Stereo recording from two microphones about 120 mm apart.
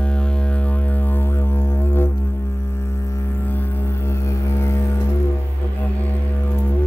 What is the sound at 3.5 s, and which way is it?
Music, 20° left (ahead or behind).